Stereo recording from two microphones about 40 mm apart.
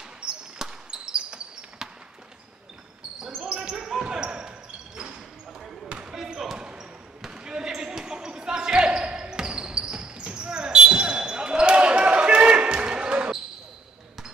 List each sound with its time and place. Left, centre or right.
0.2 s basketball bounce: centre
3.3 s basketball bounce: right
6.1 s basketball bounce: centre